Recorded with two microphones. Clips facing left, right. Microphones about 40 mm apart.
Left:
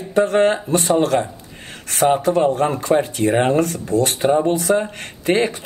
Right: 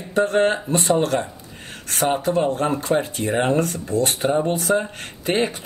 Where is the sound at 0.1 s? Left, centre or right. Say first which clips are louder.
Left 3 dB; left.